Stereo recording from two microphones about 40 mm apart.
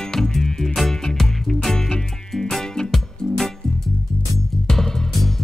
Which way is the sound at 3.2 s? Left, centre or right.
Centre.